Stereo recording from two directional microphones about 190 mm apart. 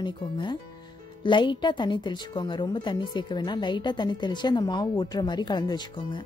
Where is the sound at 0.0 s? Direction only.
25° left (ahead or behind).